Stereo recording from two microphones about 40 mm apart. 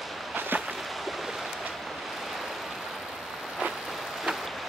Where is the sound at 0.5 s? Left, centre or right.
Right.